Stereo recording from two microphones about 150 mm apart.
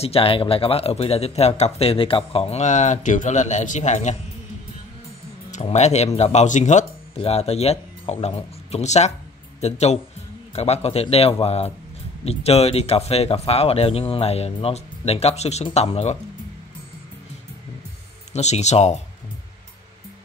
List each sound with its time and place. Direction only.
0.0 s speech: 40° left (ahead or behind)
5.5 s speech: 50° left (ahead or behind)
7.2 s speech: 45° left (ahead or behind)
18.3 s speech: 50° left (ahead or behind)